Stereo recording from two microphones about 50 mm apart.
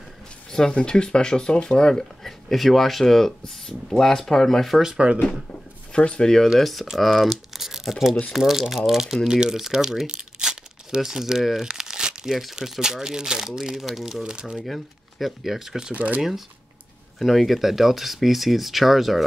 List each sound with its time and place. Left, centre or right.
0.5 s speech: centre
4.8 s speech: right
5.9 s speech: left
6.2 s speech: centre
12.3 s speech: centre
14.2 s speech: centre
14.6 s speech: centre
15.9 s speech: right
16.2 s speech: centre